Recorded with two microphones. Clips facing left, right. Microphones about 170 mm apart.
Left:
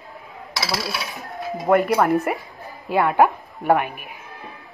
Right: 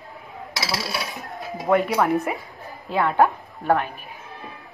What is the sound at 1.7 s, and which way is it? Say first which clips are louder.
A woman's voice: left 2 dB; centre (ahead or behind).